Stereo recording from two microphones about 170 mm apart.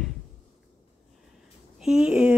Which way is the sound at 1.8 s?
5° right (ahead or behind).